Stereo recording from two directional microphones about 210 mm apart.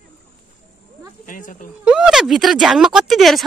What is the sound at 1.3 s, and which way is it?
Speech, 40° left (ahead or behind).